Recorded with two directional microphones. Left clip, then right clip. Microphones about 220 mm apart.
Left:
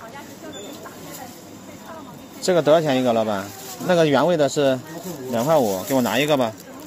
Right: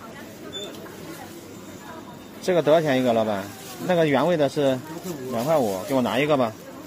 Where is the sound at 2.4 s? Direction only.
10° left (ahead or behind).